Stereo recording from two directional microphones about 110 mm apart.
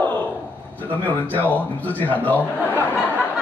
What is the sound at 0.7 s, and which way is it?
Speech, 15° left (ahead or behind).